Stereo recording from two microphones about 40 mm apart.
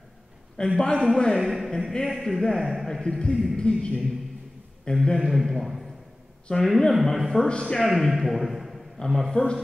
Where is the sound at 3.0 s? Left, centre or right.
Centre.